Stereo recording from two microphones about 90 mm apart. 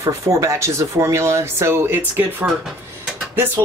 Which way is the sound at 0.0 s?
35° right (ahead or behind).